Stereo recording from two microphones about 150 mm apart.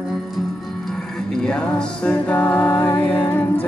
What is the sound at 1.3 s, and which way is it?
Music, 5° left (ahead or behind).